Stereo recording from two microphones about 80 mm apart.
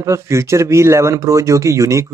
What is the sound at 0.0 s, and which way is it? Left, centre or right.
Speech, right.